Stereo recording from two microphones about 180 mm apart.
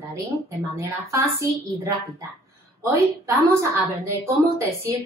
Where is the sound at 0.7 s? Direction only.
15° right (ahead or behind).